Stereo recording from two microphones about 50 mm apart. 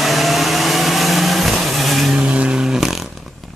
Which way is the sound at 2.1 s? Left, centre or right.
Right.